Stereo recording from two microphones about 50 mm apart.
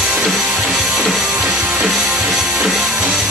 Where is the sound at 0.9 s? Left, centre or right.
Centre.